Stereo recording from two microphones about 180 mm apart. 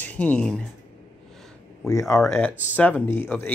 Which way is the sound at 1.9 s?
15° left (ahead or behind).